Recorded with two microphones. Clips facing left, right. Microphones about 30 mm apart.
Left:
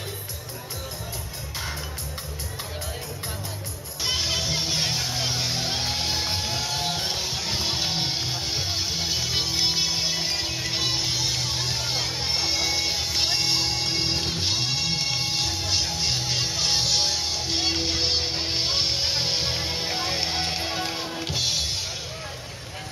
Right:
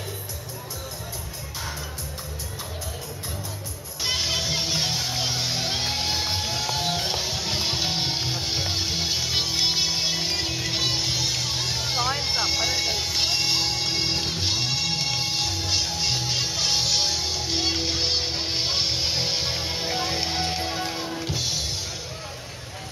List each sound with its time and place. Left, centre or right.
4.0 s music: centre
21.3 s music: left